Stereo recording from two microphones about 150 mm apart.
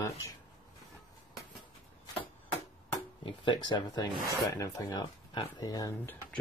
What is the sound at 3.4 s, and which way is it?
Speech, 30° left (ahead or behind).